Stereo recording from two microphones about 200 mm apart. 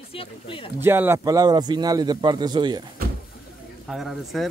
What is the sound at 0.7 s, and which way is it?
A man's voice, 10° right (ahead or behind).